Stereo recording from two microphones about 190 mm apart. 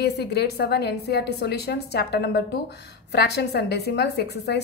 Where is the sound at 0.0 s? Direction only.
60° left (ahead or behind).